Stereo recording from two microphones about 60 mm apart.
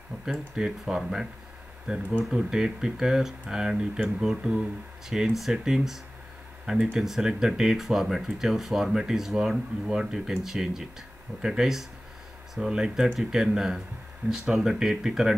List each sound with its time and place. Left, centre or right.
0.2 s speech: centre